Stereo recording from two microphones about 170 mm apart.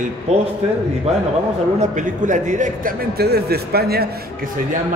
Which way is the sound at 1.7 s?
45° right (ahead or behind).